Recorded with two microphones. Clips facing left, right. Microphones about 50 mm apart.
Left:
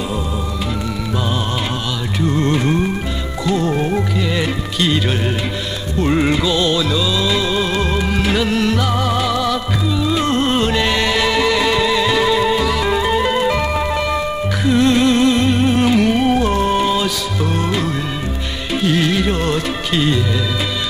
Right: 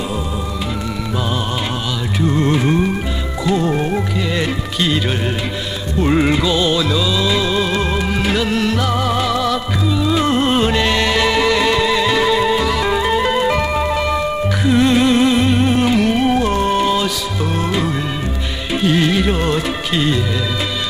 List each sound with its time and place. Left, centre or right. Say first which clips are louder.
2.1 s music: right 1 dB; centre